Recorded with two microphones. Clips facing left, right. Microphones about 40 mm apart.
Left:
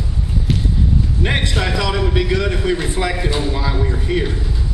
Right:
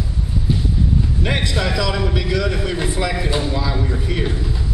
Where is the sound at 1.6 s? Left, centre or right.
Centre.